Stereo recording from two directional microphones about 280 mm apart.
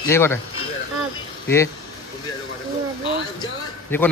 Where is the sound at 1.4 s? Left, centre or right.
Centre.